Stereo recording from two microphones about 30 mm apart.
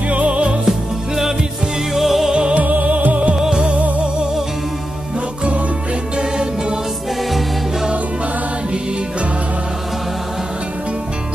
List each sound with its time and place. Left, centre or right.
0.1 s music: right
0.7 s music: centre
2.5 s music: right
3.3 s music: right
6.1 s music: right